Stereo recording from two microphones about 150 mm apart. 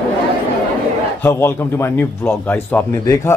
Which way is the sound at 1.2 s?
15° left (ahead or behind).